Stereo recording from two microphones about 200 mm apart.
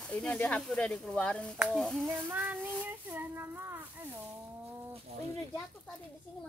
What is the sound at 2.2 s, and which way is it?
Speech, 10° right (ahead or behind).